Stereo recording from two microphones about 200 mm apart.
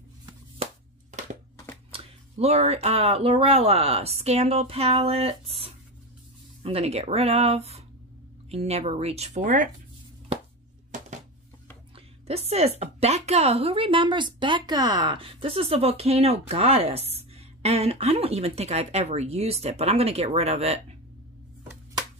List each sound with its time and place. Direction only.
1.9 s a woman's voice: 30° right (ahead or behind)
12.3 s a woman's voice: 30° right (ahead or behind)